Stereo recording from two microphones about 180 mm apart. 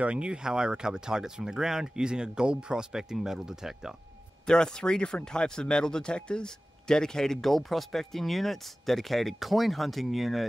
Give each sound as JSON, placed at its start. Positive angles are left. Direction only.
{"t": 0.0, "sound": "speech", "side_deg": -5}